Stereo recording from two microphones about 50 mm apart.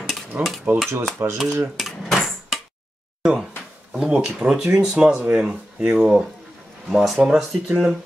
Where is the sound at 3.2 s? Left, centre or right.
Centre.